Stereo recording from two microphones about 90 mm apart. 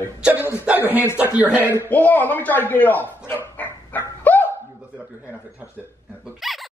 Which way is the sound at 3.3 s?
20° left (ahead or behind).